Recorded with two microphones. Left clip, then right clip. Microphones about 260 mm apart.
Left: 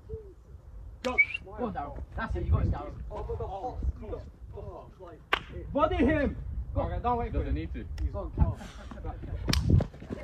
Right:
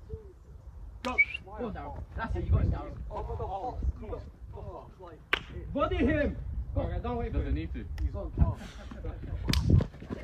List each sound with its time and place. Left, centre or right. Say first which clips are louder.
1.1 s a sound: left 1 dB; centre
1.6 s speech: left 4 dB; centre
3.3 s speech: left 1 dB; right
5.3 s whip: left 2 dB; centre
6.7 s speech: left 5 dB; centre
7.3 s speech: left 1 dB; centre
8.1 s speech: left 2 dB; centre
8.5 s speech: left 1 dB; centre